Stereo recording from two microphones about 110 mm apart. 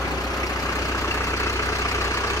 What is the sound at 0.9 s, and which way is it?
Vehicle, 25° left (ahead or behind).